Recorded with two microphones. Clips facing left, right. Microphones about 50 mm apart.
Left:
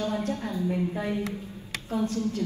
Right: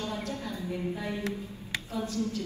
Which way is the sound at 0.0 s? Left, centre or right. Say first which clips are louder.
Left 6 dB; left.